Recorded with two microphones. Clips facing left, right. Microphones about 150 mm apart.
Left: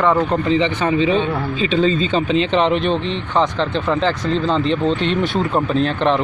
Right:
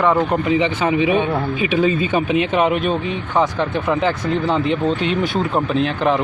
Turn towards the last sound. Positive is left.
turn(degrees=-5)  # may be behind; listen again after turning